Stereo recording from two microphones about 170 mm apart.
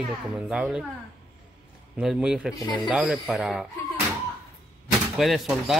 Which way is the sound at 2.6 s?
25° left (ahead or behind).